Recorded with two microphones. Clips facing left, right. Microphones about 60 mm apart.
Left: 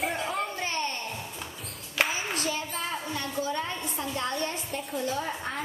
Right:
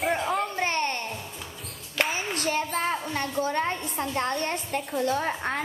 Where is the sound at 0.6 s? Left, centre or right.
Right.